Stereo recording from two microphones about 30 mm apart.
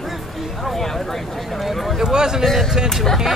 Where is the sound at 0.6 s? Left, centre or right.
Centre.